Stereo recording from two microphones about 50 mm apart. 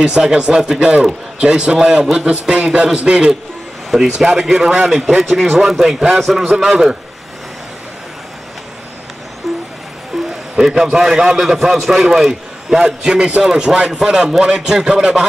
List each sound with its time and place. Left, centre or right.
0.0 s a man's voice: centre
9.5 s vehicle: centre
10.1 s a sound: centre
10.6 s a man's voice: centre
12.8 s a man's voice: centre